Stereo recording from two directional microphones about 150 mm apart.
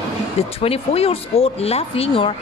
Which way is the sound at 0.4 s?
40° left (ahead or behind).